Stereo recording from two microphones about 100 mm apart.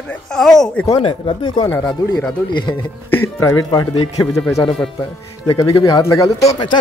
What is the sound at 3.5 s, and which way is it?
Speech, 45° left (ahead or behind).